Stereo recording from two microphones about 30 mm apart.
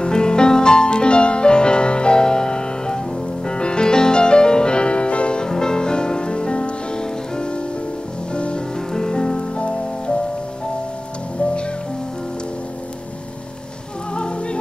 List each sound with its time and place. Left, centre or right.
0.0 s music: left
5.4 s music: left
8.9 s music: left
14.1 s music: left